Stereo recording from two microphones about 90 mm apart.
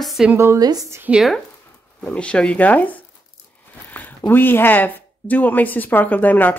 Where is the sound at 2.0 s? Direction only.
15° left (ahead or behind).